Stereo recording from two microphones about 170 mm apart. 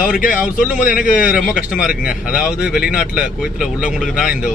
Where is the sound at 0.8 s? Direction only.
50° left (ahead or behind).